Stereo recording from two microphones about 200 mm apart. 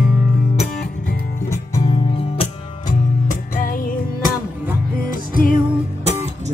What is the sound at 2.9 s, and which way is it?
Music, 40° left (ahead or behind).